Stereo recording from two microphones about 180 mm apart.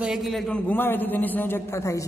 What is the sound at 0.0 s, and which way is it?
A man's voice, centre (ahead or behind).